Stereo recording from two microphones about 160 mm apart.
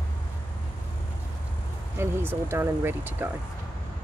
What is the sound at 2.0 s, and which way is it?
Speech, 15° right (ahead or behind).